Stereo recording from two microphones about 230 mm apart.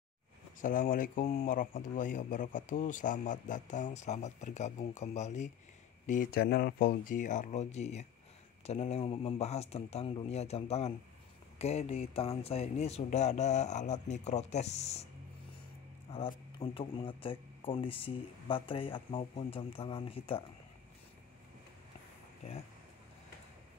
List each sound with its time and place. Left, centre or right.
0.6 s speech: left
16.1 s speech: left
22.4 s speech: left